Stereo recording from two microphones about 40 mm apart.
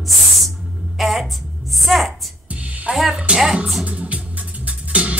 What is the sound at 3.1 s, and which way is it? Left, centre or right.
Speech, right.